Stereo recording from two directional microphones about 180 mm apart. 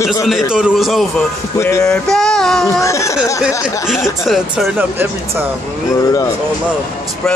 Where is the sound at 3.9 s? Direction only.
Centre (ahead or behind).